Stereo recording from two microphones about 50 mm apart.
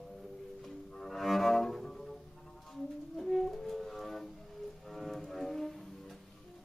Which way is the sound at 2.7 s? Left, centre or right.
Centre.